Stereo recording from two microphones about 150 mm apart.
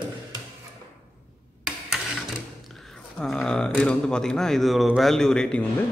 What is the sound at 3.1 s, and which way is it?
A man's voice, 5° left (ahead or behind).